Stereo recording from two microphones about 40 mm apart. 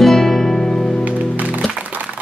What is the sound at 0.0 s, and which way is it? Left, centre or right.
Music, centre.